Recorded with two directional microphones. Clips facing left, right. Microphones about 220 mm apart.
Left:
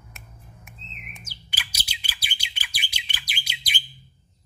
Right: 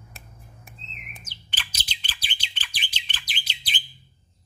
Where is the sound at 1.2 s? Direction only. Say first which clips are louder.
Even; 10° left (ahead or behind).